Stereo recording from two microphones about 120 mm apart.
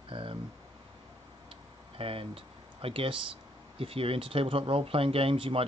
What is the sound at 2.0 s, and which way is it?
Speech, 50° right (ahead or behind).